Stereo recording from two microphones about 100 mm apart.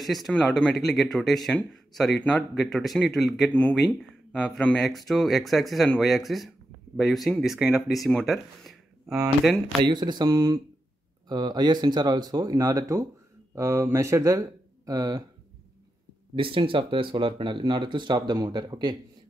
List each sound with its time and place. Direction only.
0.0 s speech: centre (ahead or behind)
9.8 s speech: 50° right (ahead or behind)
16.3 s speech: 60° right (ahead or behind)